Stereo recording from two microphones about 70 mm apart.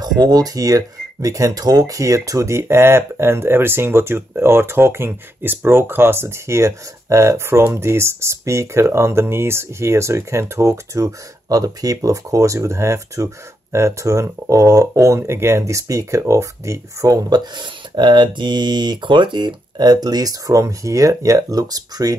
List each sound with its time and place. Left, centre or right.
0.2 s speech: right
15.1 s speech: right
17.1 s speech: right